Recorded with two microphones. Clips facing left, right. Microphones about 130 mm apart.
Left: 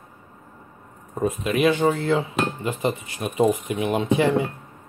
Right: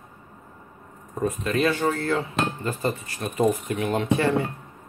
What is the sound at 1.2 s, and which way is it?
Speech, 15° left (ahead or behind).